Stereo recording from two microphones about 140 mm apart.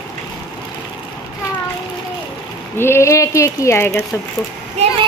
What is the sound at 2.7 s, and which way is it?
Speech, 15° left (ahead or behind).